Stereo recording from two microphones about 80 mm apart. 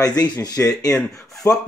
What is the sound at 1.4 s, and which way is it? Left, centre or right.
Speech, left.